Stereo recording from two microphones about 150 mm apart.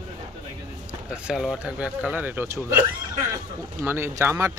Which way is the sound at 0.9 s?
5° right (ahead or behind).